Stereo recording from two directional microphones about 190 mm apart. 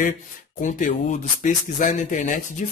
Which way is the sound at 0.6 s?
40° left (ahead or behind).